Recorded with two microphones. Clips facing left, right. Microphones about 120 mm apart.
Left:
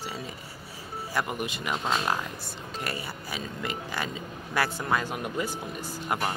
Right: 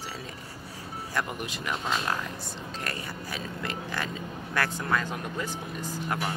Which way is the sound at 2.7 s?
5° left (ahead or behind).